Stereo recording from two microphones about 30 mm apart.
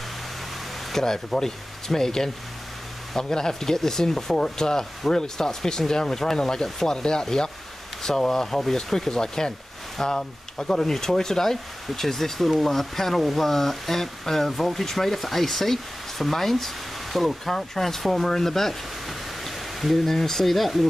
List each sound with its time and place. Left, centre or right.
0.9 s speech: centre
17.5 s speech: centre
19.0 s a sound: centre
20.5 s speech: centre